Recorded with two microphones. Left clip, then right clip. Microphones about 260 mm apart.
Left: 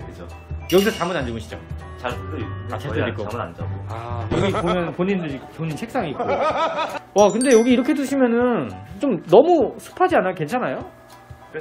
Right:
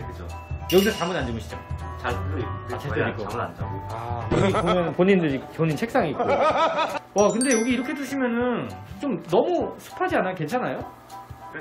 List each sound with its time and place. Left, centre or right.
0.7 s speech: centre
2.0 s speech: left
2.8 s a man's voice: centre
5.0 s a man's voice: centre
5.7 s speech: centre
7.4 s speech: centre